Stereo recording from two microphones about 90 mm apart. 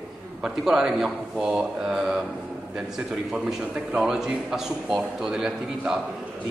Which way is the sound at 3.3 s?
10° right (ahead or behind).